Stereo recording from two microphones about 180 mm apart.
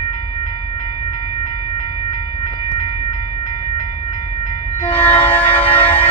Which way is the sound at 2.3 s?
25° left (ahead or behind).